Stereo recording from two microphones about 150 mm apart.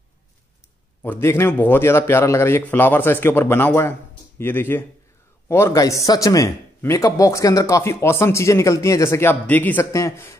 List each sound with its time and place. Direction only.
1.0 s a man's voice: 15° left (ahead or behind)